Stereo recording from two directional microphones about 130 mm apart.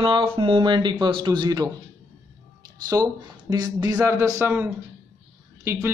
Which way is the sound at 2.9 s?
30° right (ahead or behind).